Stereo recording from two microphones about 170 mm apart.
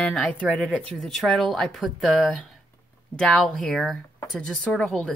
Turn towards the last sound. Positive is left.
turn(degrees=5)  # may be behind; listen again after turning